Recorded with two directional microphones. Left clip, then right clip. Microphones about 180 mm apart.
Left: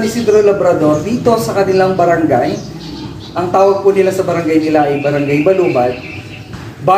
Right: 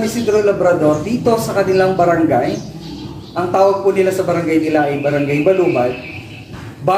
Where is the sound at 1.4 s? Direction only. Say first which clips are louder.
Left 2 dB; centre (ahead or behind).